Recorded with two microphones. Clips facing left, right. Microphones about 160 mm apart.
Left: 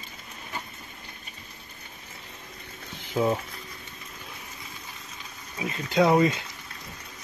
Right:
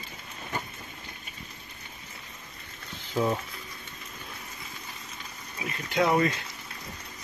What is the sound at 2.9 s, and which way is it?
Boiling, 15° left (ahead or behind).